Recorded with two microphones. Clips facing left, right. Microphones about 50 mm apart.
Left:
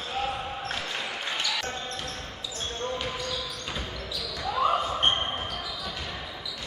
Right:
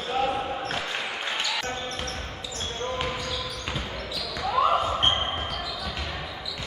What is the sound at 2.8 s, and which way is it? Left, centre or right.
Basketball bounce, centre.